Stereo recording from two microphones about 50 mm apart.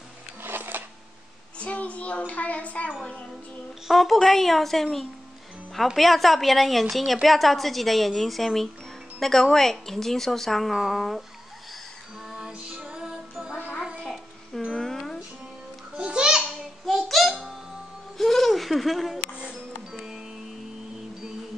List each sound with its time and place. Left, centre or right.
0.4 s a sound: right
1.6 s child singing: left
3.8 s a woman's voice: centre
12.3 s music: centre
12.6 s music: right
14.7 s a sound: centre
16.0 s babbling: right
16.8 s child singing: centre
18.1 s a sound: centre
19.1 s music: centre